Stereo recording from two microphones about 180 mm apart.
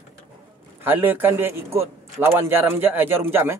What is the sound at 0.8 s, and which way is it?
A man's voice, 10° right (ahead or behind).